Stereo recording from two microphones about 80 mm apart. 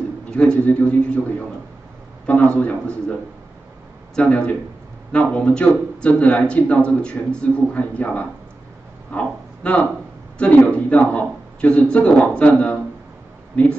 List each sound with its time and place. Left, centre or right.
0.4 s a man's voice: centre
2.2 s a man's voice: centre